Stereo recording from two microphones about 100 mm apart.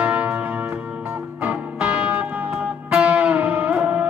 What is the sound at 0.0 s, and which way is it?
Church bell, 15° right (ahead or behind).